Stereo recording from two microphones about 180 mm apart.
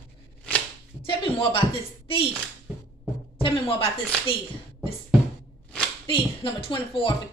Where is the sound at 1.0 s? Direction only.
30° left (ahead or behind).